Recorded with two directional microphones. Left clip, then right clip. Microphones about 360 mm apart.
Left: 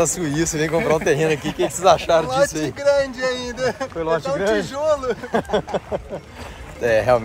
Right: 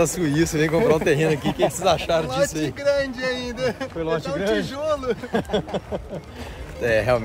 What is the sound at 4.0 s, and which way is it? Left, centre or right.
Speech, centre.